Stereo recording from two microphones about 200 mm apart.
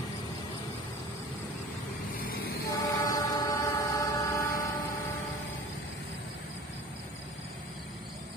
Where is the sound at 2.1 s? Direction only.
50° left (ahead or behind).